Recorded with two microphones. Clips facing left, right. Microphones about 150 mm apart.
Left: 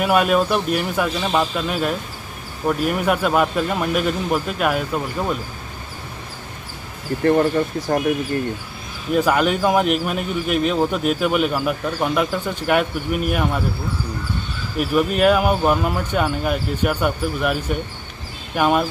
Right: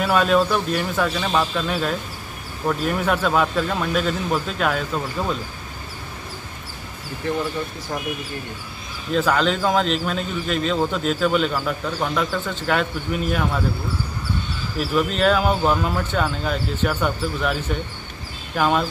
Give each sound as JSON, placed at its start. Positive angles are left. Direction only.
{"t": 0.0, "sound": "a man's voice", "side_deg": 10}
{"t": 9.1, "sound": "a man's voice", "side_deg": 15}
{"t": 14.8, "sound": "a man's voice", "side_deg": 10}